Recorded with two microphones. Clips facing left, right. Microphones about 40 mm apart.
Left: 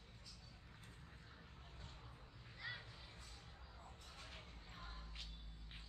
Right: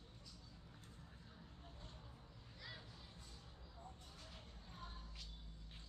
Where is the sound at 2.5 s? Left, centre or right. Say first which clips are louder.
Left 6 dB; left.